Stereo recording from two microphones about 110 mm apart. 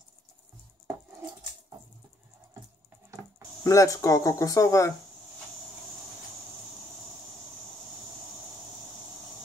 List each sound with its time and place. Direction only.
3.6 s speech: 30° left (ahead or behind)